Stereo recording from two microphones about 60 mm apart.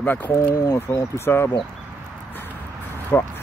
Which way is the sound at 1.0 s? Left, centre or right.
Left.